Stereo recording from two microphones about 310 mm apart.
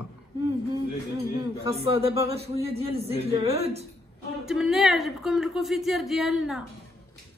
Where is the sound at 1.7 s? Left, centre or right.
Centre.